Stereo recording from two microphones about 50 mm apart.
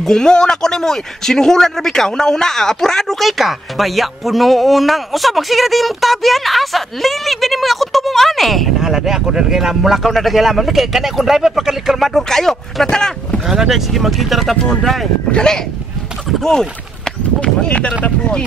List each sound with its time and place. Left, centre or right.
0.0 s speech: centre
8.7 s speech: centre
12.1 s speech: centre
13.5 s speech: centre
14.6 s speech: centre
17.4 s speech: left